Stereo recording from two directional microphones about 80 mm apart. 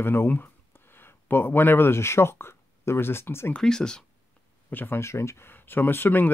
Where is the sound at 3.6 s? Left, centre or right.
Centre.